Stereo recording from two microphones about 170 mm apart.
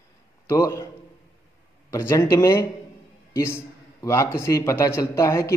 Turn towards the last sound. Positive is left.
turn(degrees=15)  # may be behind; listen again after turning